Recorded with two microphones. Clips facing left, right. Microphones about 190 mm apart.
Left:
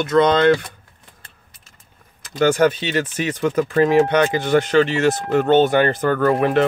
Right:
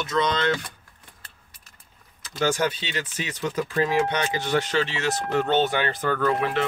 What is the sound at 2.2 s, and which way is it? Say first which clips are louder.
Speech: left 8 dB; 55° left (ahead or behind).